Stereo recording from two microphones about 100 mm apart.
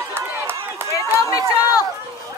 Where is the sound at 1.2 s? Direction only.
35° left (ahead or behind).